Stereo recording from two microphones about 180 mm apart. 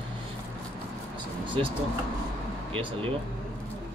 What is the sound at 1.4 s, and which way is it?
Speech, 30° right (ahead or behind).